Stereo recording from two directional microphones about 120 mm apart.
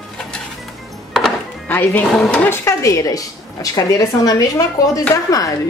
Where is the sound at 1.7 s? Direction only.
15° left (ahead or behind).